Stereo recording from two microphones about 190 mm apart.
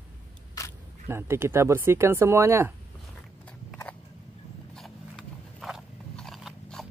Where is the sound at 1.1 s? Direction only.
15° right (ahead or behind).